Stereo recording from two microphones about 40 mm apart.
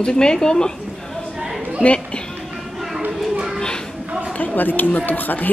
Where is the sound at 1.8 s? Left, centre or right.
Left.